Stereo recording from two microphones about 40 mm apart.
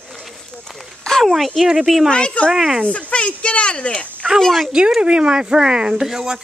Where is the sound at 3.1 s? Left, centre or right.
Left.